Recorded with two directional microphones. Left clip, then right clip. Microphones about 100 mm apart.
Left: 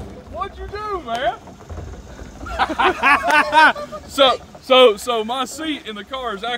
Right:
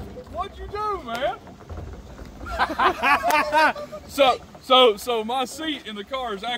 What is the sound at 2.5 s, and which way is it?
Speech, 5° left (ahead or behind).